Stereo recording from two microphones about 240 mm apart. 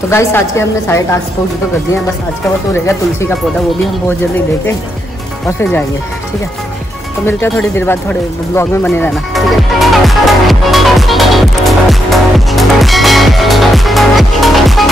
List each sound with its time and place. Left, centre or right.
0.1 s a woman's voice: centre
5.6 s a woman's voice: centre
7.2 s music: centre